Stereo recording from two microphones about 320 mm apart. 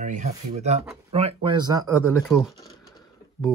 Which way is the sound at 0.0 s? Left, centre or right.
Right.